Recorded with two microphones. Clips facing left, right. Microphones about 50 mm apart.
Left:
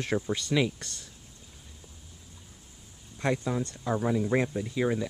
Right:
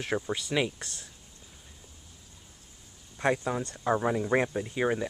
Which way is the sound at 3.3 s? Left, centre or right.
Centre.